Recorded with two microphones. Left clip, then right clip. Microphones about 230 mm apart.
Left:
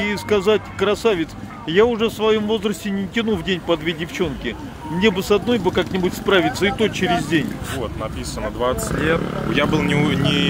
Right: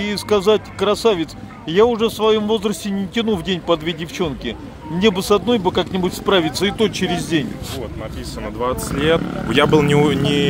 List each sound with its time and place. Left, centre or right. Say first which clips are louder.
0.0 s speech: right 1 dB; right
9.0 s speech: right 4 dB; right